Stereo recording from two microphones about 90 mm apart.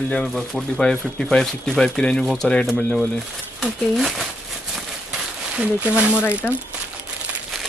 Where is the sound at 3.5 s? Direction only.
Centre (ahead or behind).